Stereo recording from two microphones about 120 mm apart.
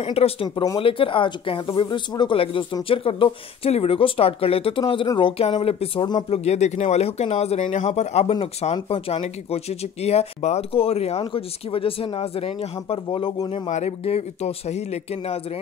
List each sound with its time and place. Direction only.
0.0 s speech: 55° left (ahead or behind)
5.6 s speech: 55° left (ahead or behind)
13.5 s speech: 70° left (ahead or behind)